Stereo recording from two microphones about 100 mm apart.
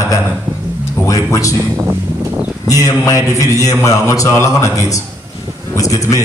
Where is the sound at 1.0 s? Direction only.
35° left (ahead or behind).